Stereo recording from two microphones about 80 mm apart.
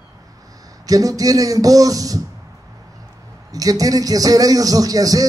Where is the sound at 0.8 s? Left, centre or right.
Right.